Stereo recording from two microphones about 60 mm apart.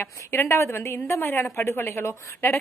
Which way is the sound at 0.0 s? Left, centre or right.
Left.